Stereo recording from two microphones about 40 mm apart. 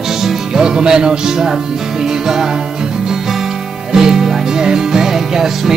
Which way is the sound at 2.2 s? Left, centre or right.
Centre.